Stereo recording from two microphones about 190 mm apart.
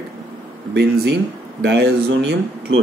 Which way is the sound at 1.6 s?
65° right (ahead or behind).